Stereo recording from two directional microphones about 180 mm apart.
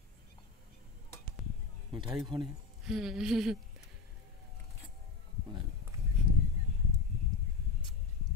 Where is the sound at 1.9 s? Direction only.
25° right (ahead or behind).